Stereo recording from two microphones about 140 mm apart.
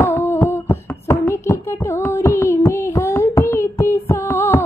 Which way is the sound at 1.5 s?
20° left (ahead or behind).